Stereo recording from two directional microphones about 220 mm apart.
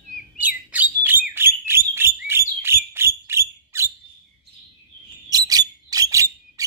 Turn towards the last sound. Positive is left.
turn(degrees=-15)  # may be behind; listen again after turning